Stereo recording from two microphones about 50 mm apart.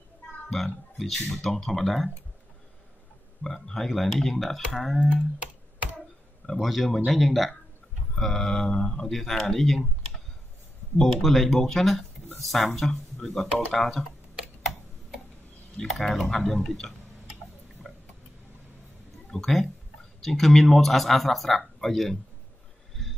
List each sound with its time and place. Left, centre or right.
0.9 s speech: centre
3.4 s speech: centre
5.0 s speech: right
6.6 s speech: centre
15.8 s speech: centre
16.6 s tick: centre
17.8 s a sound: centre
19.3 s speech: centre